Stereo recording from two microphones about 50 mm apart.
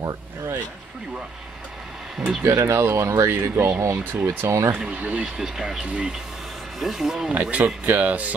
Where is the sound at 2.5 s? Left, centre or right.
Right.